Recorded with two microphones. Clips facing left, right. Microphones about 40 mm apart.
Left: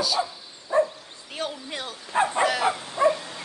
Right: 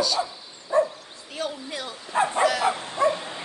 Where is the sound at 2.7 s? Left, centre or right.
Right.